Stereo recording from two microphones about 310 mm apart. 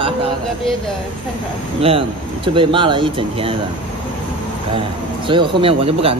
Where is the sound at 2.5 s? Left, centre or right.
Centre.